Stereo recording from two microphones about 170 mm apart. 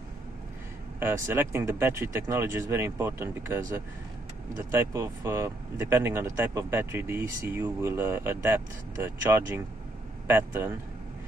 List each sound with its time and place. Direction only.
0.9 s speech: 15° right (ahead or behind)